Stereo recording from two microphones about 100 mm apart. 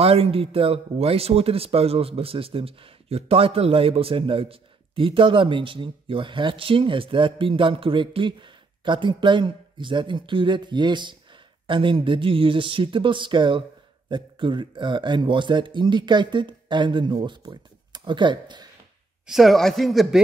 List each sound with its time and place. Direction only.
0.0 s speech: 75° right (ahead or behind); by 18.7 s 50° right (ahead or behind)
19.2 s speech: centre (ahead or behind)